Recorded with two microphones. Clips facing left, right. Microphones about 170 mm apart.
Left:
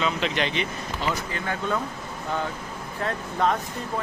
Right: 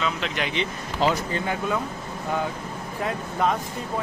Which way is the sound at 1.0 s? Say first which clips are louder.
Right 6 dB; 90° right.